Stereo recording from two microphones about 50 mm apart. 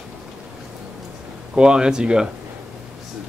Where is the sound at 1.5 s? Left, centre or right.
Centre.